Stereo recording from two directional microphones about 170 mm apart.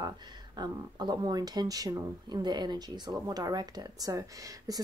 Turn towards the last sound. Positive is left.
turn(degrees=-20)  # may be behind; listen again after turning